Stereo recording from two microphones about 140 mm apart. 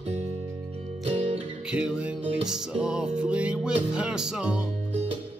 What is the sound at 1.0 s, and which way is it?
Music, 45° right (ahead or behind).